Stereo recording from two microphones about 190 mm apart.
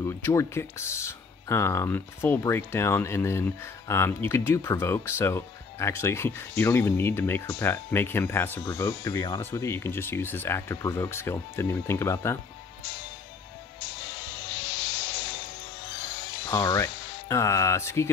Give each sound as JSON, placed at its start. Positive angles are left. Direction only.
{"t": 0.0, "sound": "speech", "side_deg": 15}
{"t": 16.4, "sound": "speech", "side_deg": 15}